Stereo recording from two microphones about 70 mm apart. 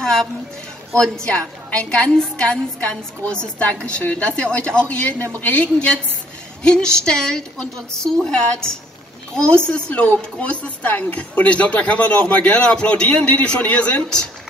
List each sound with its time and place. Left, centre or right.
0.9 s speech: centre
9.7 s speech: centre